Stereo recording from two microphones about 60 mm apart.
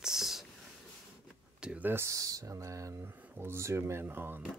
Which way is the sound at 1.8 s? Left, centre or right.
Right.